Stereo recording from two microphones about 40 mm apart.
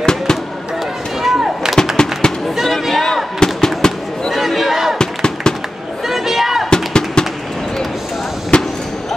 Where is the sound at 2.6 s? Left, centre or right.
Centre.